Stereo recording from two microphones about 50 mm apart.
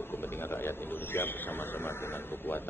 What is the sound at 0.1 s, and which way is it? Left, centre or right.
A man's voice, left.